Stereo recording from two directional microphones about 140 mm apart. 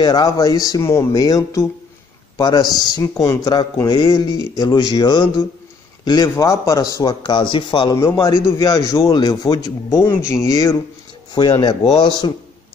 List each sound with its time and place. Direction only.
0.0 s a man's voice: 25° left (ahead or behind)
7.9 s a man's voice: 20° left (ahead or behind)
11.9 s a man's voice: 30° left (ahead or behind)